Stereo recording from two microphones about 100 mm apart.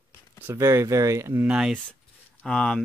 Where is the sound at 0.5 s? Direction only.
30° right (ahead or behind).